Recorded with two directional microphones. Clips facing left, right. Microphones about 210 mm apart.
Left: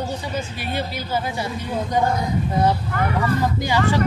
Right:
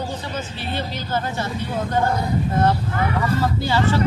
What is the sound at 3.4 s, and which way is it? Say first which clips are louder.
Speech: even; 15° left (ahead or behind).